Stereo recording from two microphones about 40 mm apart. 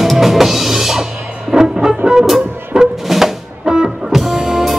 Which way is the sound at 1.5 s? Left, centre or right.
Centre.